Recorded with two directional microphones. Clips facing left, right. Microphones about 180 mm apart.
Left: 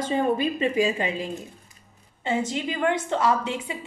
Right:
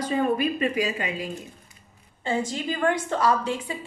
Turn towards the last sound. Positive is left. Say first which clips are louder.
# even
turn(degrees=20)  # may be behind; listen again after turning